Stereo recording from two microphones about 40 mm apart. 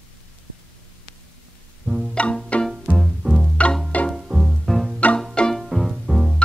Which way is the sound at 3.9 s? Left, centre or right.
Left.